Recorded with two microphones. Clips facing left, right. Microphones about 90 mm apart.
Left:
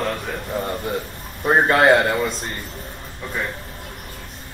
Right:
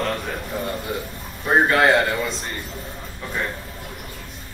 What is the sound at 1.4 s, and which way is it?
Speech, 30° left (ahead or behind).